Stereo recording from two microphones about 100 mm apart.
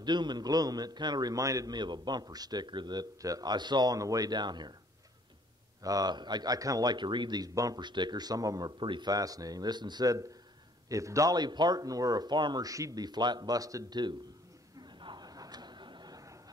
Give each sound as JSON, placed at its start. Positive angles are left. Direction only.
{"t": 0.0, "sound": "a man's voice", "side_deg": -45}
{"t": 5.8, "sound": "a man's voice", "side_deg": -40}
{"t": 9.1, "sound": "speech", "side_deg": -35}
{"t": 14.8, "sound": "a sound", "side_deg": -50}